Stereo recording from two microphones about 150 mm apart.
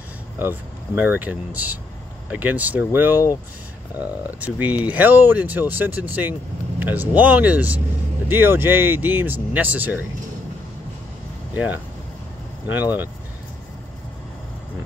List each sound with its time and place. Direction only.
0.4 s speech: 10° right (ahead or behind)
11.5 s speech: 10° right (ahead or behind)